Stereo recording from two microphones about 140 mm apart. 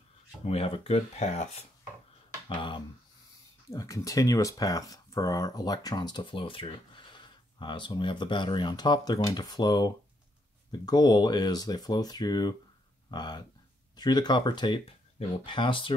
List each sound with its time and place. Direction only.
0.5 s speech: 45° left (ahead or behind)
2.4 s speech: 35° left (ahead or behind)
3.7 s speech: 25° left (ahead or behind)